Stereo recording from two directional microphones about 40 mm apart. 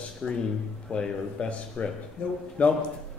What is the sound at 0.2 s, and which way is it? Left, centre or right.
Speech, left.